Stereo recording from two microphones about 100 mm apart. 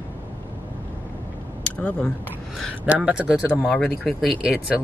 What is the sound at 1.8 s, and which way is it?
Speech, 10° left (ahead or behind).